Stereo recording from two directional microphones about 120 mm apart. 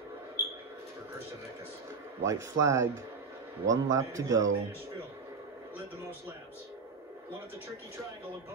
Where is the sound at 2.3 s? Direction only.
25° right (ahead or behind).